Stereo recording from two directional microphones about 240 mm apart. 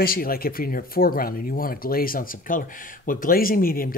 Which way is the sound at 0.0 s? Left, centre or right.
Left.